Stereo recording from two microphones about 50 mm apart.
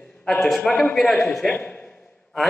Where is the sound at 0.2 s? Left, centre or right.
Centre.